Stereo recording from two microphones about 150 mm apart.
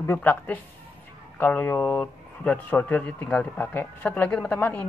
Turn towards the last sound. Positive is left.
turn(degrees=15)  # may be behind; listen again after turning